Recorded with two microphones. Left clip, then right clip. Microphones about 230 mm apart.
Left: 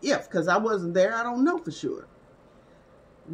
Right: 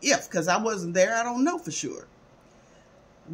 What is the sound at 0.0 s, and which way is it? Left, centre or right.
Speech, right.